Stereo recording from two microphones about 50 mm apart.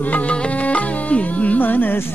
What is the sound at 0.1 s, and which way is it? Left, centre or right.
Music, left.